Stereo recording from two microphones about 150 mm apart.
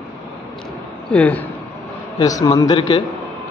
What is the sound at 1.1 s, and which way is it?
Speech, 10° left (ahead or behind).